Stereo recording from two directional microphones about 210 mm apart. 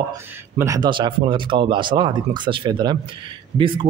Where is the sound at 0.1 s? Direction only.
15° right (ahead or behind).